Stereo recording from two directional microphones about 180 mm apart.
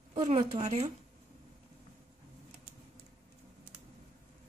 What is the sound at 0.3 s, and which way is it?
Speech, 35° right (ahead or behind).